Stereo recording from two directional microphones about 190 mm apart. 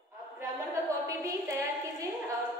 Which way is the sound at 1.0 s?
20° right (ahead or behind).